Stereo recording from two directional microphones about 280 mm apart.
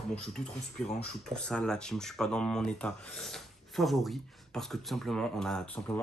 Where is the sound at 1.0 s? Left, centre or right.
Centre.